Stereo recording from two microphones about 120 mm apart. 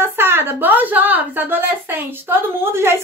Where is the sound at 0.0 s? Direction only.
20° right (ahead or behind).